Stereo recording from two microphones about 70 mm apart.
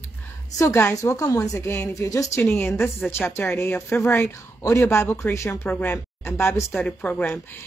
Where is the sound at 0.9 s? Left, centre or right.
Left.